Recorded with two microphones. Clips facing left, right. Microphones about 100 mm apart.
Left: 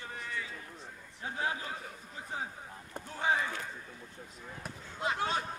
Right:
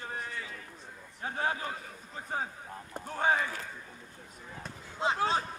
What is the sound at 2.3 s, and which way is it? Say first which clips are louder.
Speech: right 4 dB; 50° right (ahead or behind).